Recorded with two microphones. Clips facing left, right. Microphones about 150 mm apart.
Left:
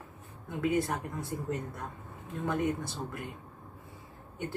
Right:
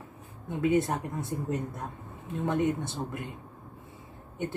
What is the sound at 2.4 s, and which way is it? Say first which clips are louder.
Speech: right 3 dB; 25° right (ahead or behind).